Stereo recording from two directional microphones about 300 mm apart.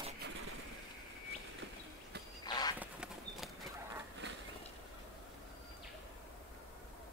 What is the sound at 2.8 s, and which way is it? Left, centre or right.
Clip-clop, centre.